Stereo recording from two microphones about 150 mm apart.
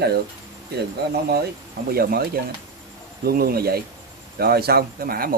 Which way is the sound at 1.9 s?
90° right.